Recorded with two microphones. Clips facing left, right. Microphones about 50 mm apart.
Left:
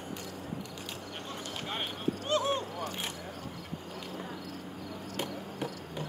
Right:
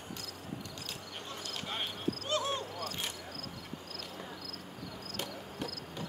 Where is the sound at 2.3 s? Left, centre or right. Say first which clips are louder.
Left 5 dB; left.